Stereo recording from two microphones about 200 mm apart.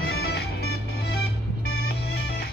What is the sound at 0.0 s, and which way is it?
Music, 50° left (ahead or behind).